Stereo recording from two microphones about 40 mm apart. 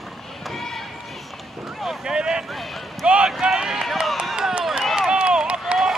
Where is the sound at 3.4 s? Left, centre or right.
Centre.